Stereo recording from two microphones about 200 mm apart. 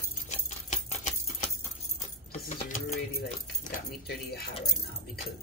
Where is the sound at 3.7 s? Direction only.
45° left (ahead or behind).